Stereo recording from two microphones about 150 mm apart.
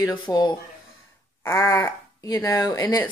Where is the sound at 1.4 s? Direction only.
15° left (ahead or behind).